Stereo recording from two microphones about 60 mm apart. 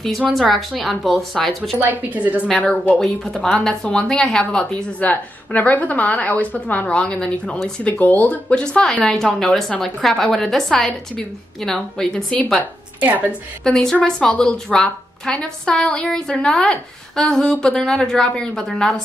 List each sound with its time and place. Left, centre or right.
0.3 s a woman's voice: centre
1.8 s a woman's voice: right
2.5 s a woman's voice: left
3.5 s a woman's voice: centre
5.0 s a woman's voice: left
9.0 s a woman's voice: centre
13.0 s a woman's voice: right
13.7 s a woman's voice: centre